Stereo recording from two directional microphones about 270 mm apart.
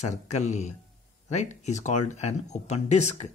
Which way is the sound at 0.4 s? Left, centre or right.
Left.